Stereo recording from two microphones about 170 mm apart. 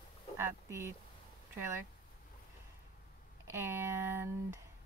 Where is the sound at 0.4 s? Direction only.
15° right (ahead or behind).